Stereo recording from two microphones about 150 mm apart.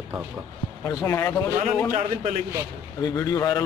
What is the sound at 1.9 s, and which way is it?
Speech, 50° right (ahead or behind).